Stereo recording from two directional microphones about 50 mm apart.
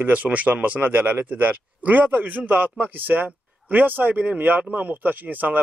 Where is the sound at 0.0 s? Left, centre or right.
Right.